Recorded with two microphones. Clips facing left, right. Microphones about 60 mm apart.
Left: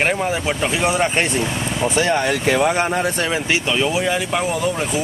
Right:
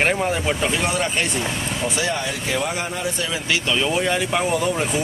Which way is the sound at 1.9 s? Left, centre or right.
Left.